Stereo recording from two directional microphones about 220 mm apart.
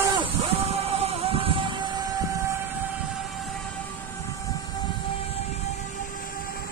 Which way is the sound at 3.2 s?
Centre (ahead or behind).